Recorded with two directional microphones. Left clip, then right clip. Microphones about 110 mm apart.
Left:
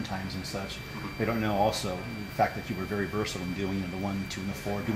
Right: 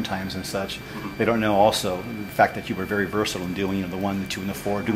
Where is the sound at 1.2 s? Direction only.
40° right (ahead or behind).